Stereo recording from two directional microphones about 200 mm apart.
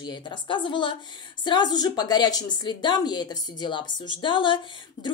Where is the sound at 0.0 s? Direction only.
20° left (ahead or behind).